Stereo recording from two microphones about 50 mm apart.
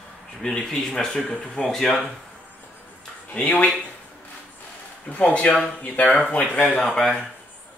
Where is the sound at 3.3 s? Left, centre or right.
Left.